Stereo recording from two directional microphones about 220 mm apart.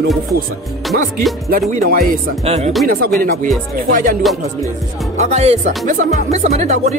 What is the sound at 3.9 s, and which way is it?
Speech, 35° right (ahead or behind).